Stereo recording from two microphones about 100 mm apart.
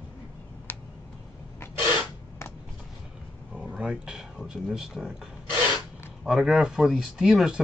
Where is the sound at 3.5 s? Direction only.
10° right (ahead or behind).